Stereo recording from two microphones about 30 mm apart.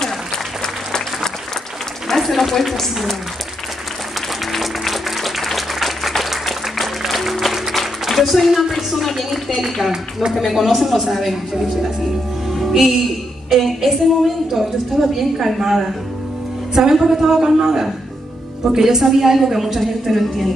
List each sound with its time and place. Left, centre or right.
2.0 s speech: centre
4.5 s music: centre
7.7 s a sound: centre
8.7 s speech: centre
10.5 s speech: centre
12.4 s music: centre
13.7 s a woman's voice: centre